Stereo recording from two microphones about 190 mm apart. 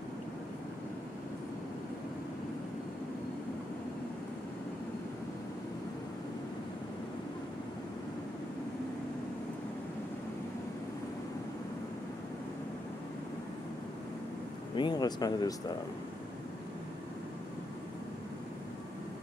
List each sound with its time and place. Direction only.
14.8 s speech: 20° left (ahead or behind)